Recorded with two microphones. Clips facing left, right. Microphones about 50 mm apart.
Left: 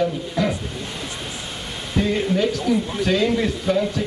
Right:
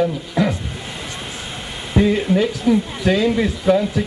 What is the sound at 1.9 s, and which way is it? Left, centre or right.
A man's voice, centre.